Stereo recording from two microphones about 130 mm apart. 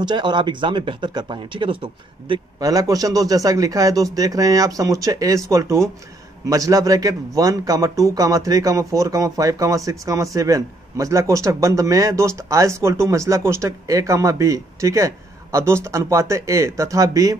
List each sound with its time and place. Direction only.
0.0 s speech: 35° right (ahead or behind)
2.6 s a man's voice: 30° right (ahead or behind)